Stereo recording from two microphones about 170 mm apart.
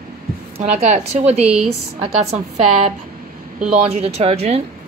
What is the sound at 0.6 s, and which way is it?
A woman's voice, 40° right (ahead or behind).